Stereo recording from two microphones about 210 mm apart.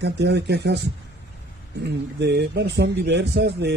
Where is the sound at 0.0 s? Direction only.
55° right (ahead or behind).